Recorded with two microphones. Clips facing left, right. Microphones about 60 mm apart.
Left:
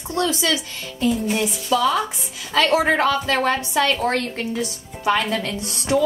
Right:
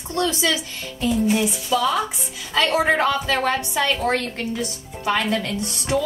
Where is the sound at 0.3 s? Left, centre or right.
Centre.